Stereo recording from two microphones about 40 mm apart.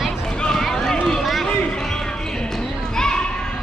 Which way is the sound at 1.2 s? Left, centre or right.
Centre.